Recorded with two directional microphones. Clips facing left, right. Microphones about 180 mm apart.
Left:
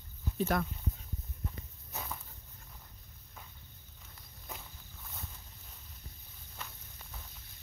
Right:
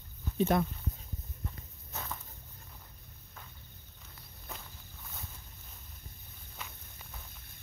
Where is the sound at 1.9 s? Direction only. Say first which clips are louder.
Even; 10° left (ahead or behind).